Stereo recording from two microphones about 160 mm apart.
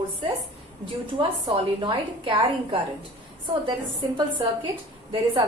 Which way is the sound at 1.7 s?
30° right (ahead or behind).